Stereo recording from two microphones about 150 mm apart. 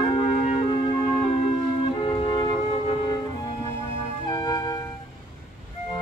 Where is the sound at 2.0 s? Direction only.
35° left (ahead or behind).